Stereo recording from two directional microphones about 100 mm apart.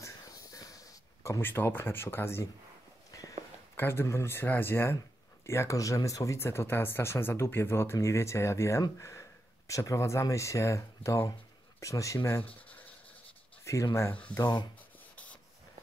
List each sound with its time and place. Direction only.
0.0 s a sound: 35° left (ahead or behind)
1.4 s speech: 20° left (ahead or behind)
3.1 s walk: 35° left (ahead or behind)
3.7 s speech: 25° left (ahead or behind)
12.2 s speech: 20° left (ahead or behind)
14.4 s speech: 45° left (ahead or behind)